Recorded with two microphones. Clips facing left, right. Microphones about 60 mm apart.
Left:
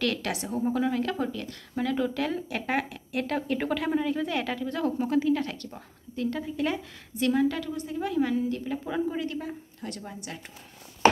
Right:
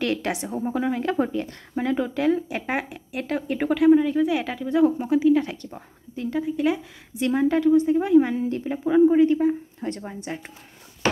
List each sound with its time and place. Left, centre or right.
0.0 s a woman's voice: right
1.1 s speech: right; by 6.8 s centre
7.2 s a woman's voice: right
8.7 s speech: centre
9.0 s a woman's voice: right